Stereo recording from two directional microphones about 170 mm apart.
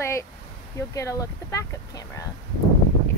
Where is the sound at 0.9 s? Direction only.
15° left (ahead or behind).